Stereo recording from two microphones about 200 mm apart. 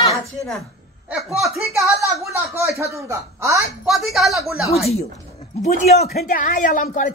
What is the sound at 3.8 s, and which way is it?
Speech, centre (ahead or behind).